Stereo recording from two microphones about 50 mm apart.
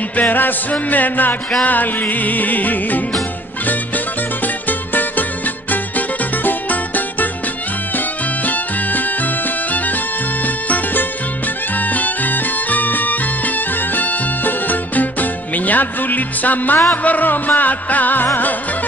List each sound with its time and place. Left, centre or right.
0.1 s music: left
8.5 s music: left